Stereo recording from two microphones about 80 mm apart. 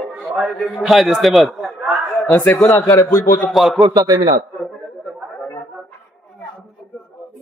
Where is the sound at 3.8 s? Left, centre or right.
Right.